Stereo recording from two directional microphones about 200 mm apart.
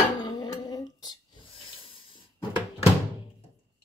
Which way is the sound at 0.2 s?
20° left (ahead or behind).